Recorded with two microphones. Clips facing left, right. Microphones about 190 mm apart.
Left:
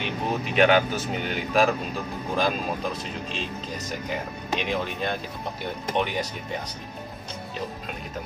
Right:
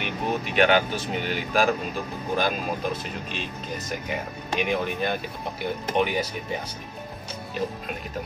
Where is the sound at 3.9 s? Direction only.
5° right (ahead or behind).